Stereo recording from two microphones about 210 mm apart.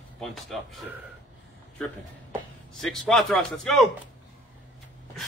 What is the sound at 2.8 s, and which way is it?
A man's voice, centre (ahead or behind).